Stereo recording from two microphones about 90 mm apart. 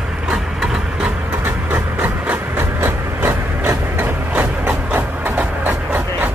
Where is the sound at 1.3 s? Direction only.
20° right (ahead or behind).